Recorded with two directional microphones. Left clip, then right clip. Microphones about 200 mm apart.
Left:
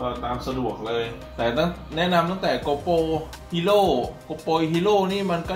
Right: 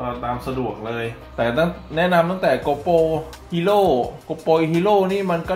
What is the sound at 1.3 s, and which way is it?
Speech, 40° right (ahead or behind).